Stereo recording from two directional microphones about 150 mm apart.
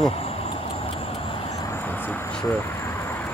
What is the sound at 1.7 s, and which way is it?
Vehicle, 15° left (ahead or behind).